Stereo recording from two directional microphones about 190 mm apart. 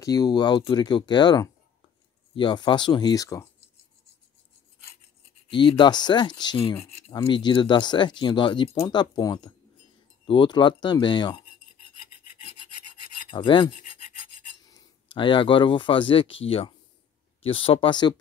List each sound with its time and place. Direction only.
0.0 s speech: 20° left (ahead or behind)
5.5 s speech: 25° left (ahead or behind)
13.3 s speech: 25° left (ahead or behind)
15.1 s speech: 25° left (ahead or behind)